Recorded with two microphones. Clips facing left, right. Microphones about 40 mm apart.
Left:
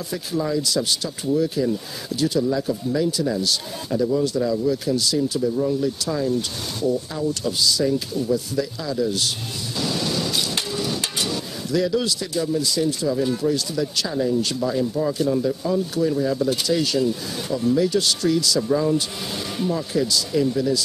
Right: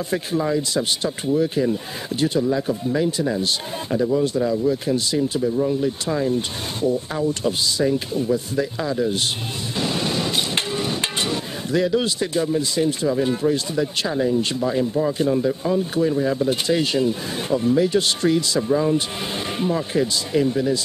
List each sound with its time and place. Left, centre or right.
0.4 s speech: right